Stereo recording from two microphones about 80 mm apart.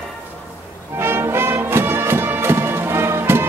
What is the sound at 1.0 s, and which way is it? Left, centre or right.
Music, right.